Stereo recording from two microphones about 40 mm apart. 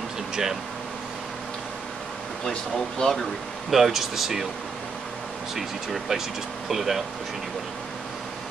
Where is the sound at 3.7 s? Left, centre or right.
Centre.